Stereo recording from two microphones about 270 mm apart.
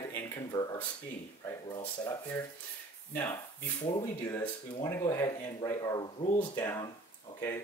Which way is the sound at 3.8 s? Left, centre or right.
Centre.